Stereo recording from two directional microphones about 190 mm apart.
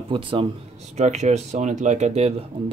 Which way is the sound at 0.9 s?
35° right (ahead or behind).